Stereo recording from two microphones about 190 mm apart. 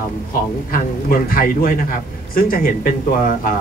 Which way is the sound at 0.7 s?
50° left (ahead or behind).